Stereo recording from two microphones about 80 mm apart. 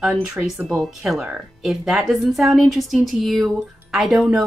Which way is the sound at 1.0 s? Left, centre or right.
Centre.